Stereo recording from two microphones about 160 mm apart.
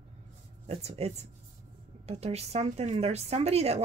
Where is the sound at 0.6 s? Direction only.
40° right (ahead or behind).